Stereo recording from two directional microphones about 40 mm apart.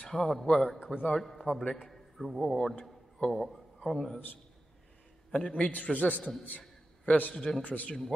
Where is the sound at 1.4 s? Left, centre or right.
Left.